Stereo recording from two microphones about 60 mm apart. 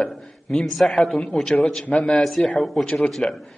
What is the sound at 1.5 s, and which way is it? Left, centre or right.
A man's voice, centre.